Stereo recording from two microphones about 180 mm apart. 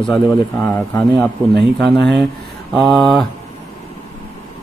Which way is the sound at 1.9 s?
70° right (ahead or behind).